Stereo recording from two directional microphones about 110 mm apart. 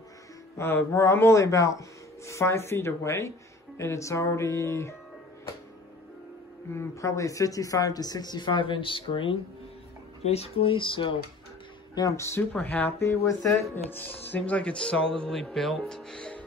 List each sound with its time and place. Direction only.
0.6 s speech: 20° left (ahead or behind)
6.7 s speech: 25° left (ahead or behind); by 9.4 s 50° left (ahead or behind)
10.2 s speech: 70° left (ahead or behind); by 11.1 s 50° left (ahead or behind)
11.9 s speech: 30° left (ahead or behind)
12.5 s speech: 15° left (ahead or behind)
13.8 s speech: 15° left (ahead or behind)